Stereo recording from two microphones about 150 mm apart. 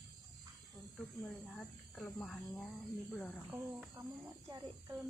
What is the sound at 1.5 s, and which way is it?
Speech, 10° left (ahead or behind).